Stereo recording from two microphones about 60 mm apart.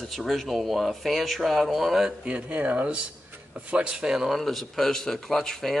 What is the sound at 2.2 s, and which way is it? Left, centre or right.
Speech, right.